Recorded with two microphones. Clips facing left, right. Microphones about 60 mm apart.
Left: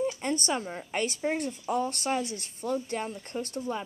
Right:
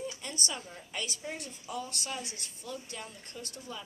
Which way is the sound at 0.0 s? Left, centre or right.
Left.